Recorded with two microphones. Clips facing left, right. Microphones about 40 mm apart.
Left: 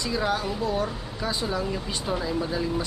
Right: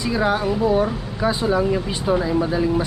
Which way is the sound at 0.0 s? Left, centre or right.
Centre.